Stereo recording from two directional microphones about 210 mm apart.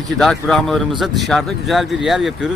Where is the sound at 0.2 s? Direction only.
Centre (ahead or behind).